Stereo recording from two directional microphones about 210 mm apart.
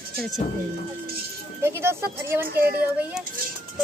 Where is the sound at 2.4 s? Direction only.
45° right (ahead or behind).